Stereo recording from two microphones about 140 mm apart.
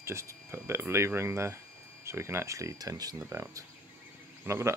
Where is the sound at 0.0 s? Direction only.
20° right (ahead or behind).